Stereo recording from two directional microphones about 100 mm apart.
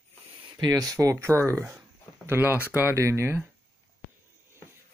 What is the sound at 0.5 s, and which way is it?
Speech, 40° right (ahead or behind).